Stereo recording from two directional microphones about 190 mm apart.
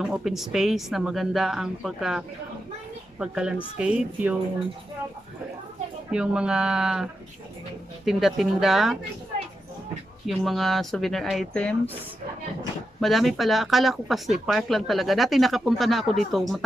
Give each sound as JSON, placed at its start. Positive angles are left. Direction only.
{"t": 0.0, "sound": "speech", "side_deg": -5}
{"t": 6.1, "sound": "speech", "side_deg": -5}
{"t": 10.2, "sound": "speech", "side_deg": 0}
{"t": 13.0, "sound": "speech", "side_deg": 0}